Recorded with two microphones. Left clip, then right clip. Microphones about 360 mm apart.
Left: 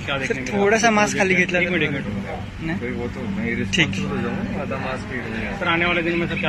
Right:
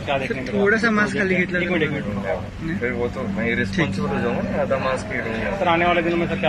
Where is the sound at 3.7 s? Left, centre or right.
Centre.